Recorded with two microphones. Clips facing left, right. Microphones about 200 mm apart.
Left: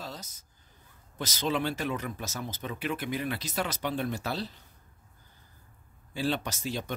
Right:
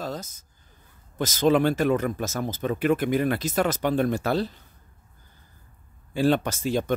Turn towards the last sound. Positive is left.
turn(degrees=-50)  # may be behind; listen again after turning